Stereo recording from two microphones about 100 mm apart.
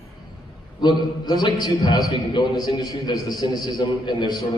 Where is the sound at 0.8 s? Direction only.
45° left (ahead or behind).